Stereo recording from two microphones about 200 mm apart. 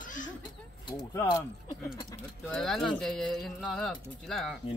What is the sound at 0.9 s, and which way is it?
Speech, 20° left (ahead or behind).